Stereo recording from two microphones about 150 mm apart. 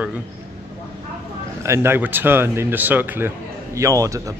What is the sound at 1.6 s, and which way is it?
Speech, 15° right (ahead or behind).